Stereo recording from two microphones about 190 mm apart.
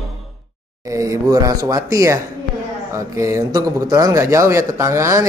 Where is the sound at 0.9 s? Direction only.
15° right (ahead or behind).